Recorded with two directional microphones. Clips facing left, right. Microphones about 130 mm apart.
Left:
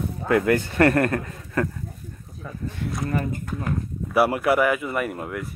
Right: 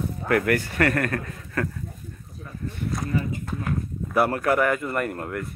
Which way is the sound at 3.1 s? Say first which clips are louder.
Left 1 dB; 50° left (ahead or behind).